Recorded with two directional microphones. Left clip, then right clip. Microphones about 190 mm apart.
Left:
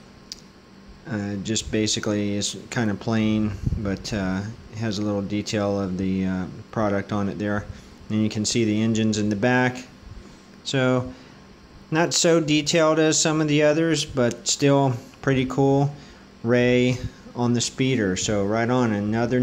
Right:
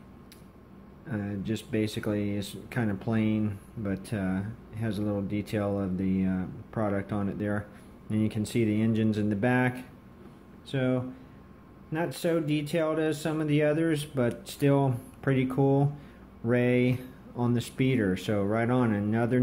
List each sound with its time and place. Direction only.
1.0 s speech: 10° left (ahead or behind)
10.6 s speech: 20° left (ahead or behind); by 19.4 s 5° left (ahead or behind)